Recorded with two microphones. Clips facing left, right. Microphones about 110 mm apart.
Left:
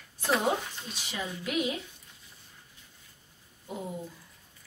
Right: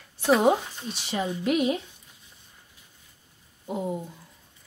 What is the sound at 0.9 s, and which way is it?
Speech, 35° right (ahead or behind).